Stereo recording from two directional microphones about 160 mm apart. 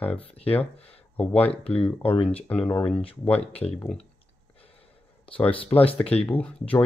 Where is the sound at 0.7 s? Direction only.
40° left (ahead or behind).